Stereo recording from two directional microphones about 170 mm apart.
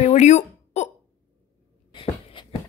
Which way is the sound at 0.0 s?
40° left (ahead or behind).